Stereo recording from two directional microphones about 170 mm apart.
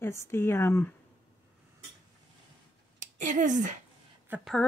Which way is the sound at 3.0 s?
50° right (ahead or behind).